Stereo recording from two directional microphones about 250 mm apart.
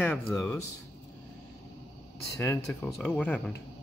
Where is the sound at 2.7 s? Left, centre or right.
Centre.